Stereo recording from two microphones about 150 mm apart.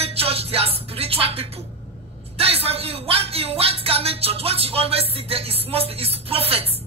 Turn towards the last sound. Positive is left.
turn(degrees=-40)  # may be behind; listen again after turning